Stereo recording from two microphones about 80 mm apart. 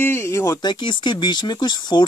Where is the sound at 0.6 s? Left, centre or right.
Left.